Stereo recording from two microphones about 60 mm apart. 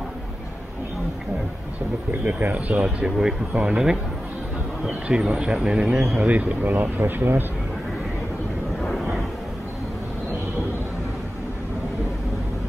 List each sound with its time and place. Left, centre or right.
2.0 s speech: right; by 4.0 s centre
5.0 s speech: centre; by 7.4 s right